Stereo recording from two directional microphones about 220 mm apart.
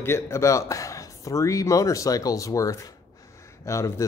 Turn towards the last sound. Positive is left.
turn(degrees=15)  # may be behind; listen again after turning